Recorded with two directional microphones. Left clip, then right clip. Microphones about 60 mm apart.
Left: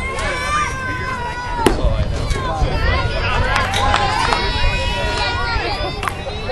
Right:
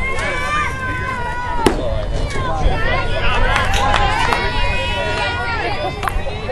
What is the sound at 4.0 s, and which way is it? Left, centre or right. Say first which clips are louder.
Run: even; right.